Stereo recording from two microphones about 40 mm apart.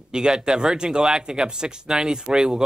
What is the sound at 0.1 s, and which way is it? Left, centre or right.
Speech, centre.